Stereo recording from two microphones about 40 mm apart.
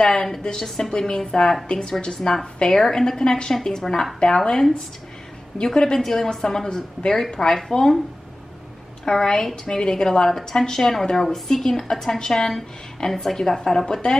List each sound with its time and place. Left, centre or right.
0.0 s a woman's voice: centre
2.1 s a woman's voice: centre
5.9 s a woman's voice: centre
9.0 s a woman's voice: centre